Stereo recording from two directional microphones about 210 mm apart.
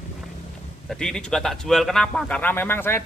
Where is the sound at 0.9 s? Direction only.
5° left (ahead or behind).